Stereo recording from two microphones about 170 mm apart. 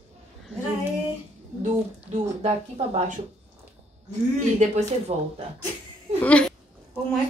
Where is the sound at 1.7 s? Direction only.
40° right (ahead or behind).